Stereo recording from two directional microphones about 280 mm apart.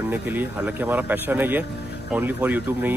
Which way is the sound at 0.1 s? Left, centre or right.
Centre.